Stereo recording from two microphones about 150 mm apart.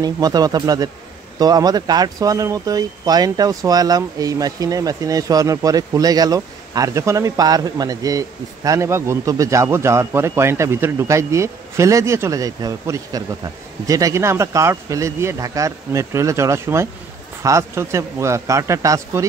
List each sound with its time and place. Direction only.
0.0 s speech: 25° right (ahead or behind)